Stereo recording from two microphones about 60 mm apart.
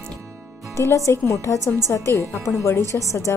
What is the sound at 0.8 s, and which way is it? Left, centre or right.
A woman's voice, left.